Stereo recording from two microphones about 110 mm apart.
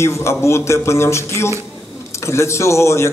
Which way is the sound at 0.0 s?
25° left (ahead or behind).